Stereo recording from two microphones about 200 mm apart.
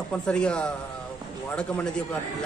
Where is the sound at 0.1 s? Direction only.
5° left (ahead or behind).